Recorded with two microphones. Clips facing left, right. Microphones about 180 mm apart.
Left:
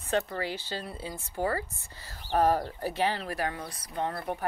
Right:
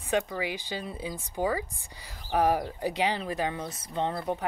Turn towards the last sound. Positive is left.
turn(degrees=-20)  # may be behind; listen again after turning